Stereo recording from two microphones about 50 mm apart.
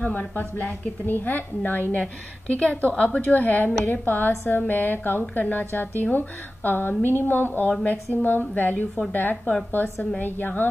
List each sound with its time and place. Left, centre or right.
0.0 s a woman's voice: left